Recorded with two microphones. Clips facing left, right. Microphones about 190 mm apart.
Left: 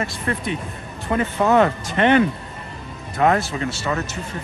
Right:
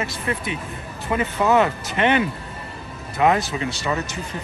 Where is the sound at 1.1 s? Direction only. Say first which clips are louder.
Left 1 dB; 35° left (ahead or behind).